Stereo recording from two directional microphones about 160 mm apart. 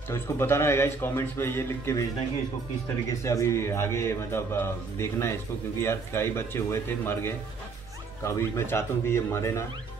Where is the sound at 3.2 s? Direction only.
20° left (ahead or behind).